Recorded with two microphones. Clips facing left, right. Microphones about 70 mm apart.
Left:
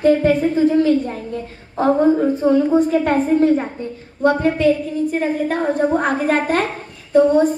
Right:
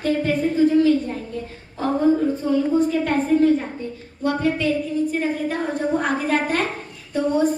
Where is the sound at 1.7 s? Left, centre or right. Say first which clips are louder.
Left 4 dB; left.